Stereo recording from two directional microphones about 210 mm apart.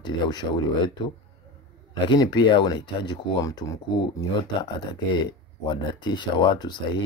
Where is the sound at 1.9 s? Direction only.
20° left (ahead or behind).